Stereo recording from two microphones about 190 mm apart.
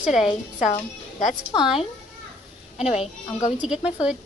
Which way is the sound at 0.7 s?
40° left (ahead or behind).